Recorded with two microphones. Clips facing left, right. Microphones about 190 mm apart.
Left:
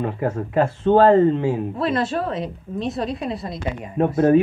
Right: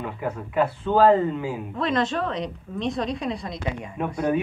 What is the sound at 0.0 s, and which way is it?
A man's voice, 45° left (ahead or behind).